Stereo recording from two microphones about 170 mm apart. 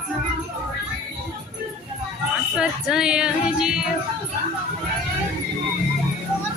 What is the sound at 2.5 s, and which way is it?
Music, 5° right (ahead or behind).